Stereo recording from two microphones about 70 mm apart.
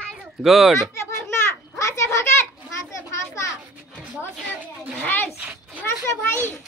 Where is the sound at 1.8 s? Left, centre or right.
Left.